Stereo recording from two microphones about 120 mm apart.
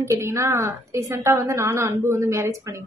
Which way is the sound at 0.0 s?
20° right (ahead or behind).